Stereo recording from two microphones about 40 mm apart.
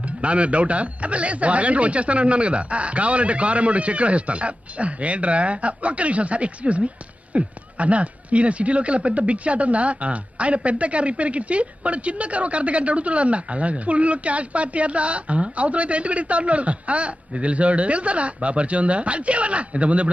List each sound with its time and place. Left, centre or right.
0.2 s speech: right